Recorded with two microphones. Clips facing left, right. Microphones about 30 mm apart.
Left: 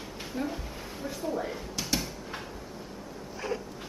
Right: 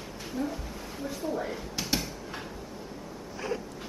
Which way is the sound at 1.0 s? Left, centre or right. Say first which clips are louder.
Even; centre.